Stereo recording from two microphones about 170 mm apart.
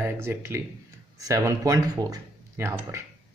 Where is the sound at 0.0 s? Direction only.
15° right (ahead or behind).